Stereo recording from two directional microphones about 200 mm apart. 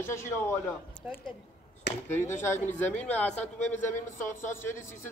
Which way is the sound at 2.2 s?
10° left (ahead or behind).